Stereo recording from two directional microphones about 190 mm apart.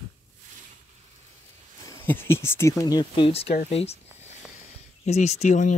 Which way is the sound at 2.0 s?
10° left (ahead or behind).